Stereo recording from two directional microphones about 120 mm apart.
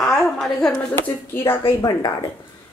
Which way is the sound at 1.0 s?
20° left (ahead or behind).